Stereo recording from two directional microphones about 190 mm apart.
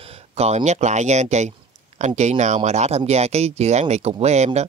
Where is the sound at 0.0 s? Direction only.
35° right (ahead or behind).